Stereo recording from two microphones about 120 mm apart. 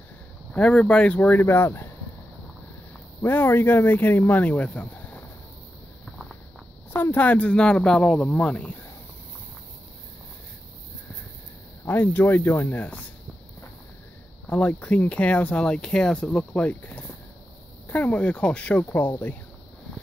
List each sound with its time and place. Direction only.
0.5 s speech: 5° left (ahead or behind)
3.2 s speech: 20° left (ahead or behind)
6.9 s speech: 15° left (ahead or behind)
11.8 s speech: 15° left (ahead or behind)
14.5 s speech: 10° left (ahead or behind)